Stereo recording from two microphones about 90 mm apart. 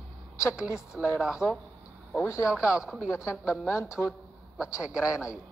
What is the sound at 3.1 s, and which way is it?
Speech, 35° left (ahead or behind).